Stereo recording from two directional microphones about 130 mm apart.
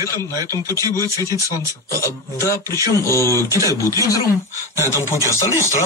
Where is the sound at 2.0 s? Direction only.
20° left (ahead or behind).